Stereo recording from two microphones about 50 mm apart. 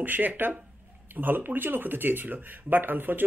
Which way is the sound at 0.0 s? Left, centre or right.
Right.